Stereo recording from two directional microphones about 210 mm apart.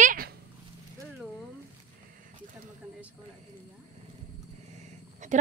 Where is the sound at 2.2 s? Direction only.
40° right (ahead or behind).